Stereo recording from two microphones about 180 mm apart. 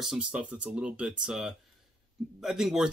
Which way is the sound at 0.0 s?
5° right (ahead or behind).